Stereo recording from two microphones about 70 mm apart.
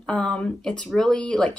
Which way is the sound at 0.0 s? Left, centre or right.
Centre.